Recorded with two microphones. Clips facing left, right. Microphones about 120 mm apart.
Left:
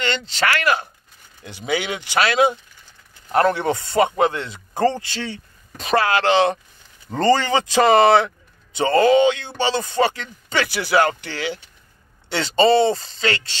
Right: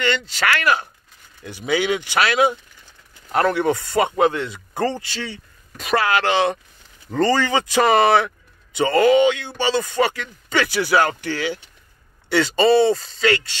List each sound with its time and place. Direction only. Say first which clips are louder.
0.0 s speech: right 1 dB; 25° left (ahead or behind)